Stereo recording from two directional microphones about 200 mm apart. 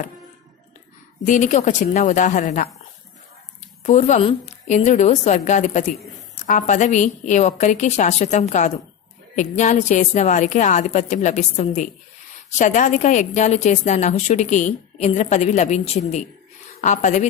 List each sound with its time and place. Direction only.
1.2 s a woman's voice: 40° left (ahead or behind)
3.8 s a woman's voice: 35° left (ahead or behind)